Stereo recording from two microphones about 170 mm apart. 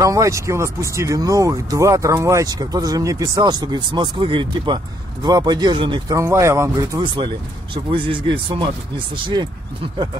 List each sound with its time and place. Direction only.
0.0 s speech: 20° right (ahead or behind)